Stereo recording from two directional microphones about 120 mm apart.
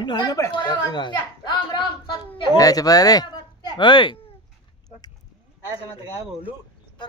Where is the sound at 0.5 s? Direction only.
40° left (ahead or behind).